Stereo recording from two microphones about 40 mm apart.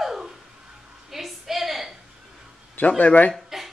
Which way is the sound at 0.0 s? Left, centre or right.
Centre.